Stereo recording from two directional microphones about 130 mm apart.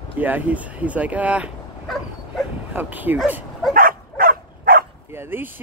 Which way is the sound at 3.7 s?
90° right.